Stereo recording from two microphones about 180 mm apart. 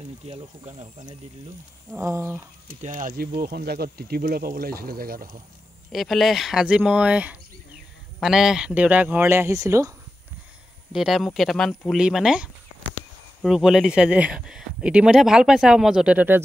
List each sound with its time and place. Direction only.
0.3 s speech: 35° right (ahead or behind)
1.9 s a man's voice: 15° right (ahead or behind)
2.7 s speech: 45° right (ahead or behind)
5.9 s a man's voice: centre (ahead or behind); by 9.9 s 15° right (ahead or behind)
10.9 s speech: centre (ahead or behind)